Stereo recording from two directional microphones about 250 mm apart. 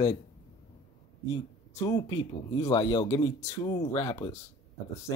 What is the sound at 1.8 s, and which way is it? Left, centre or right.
Speech, centre.